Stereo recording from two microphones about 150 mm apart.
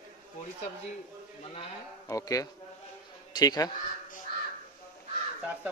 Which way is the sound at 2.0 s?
25° left (ahead or behind).